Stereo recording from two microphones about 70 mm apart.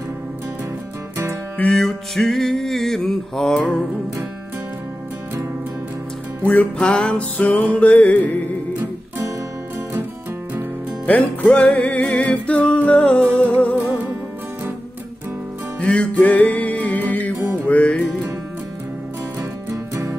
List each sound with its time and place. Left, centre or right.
1.7 s music: centre
6.4 s music: left
6.8 s music: centre
11.1 s music: left
15.8 s music: centre
19.7 s music: right